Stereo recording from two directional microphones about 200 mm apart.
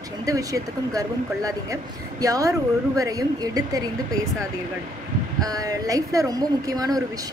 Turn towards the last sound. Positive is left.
turn(degrees=-20)  # may be behind; listen again after turning